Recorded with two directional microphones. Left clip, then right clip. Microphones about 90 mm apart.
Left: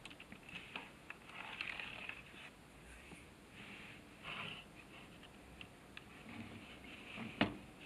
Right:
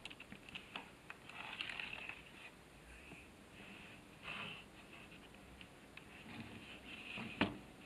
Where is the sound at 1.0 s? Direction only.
15° right (ahead or behind).